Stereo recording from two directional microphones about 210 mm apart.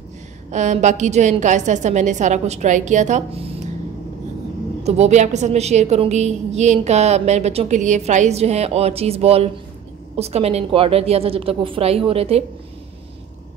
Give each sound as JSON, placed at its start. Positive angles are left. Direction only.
{"t": 0.5, "sound": "a woman's voice", "side_deg": -35}
{"t": 4.8, "sound": "a woman's voice", "side_deg": -30}